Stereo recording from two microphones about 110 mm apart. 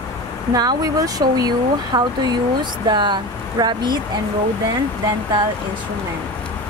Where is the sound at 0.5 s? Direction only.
35° right (ahead or behind).